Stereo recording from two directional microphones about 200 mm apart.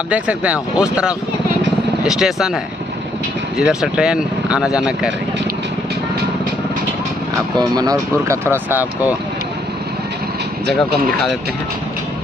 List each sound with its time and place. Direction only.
0.1 s speech: 5° right (ahead or behind)
3.5 s speech: centre (ahead or behind)
7.5 s speech: 20° right (ahead or behind)